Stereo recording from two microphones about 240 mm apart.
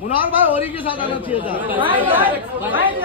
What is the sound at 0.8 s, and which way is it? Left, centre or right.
Speech, left.